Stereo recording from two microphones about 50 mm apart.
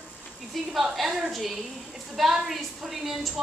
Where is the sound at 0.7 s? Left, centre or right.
Centre.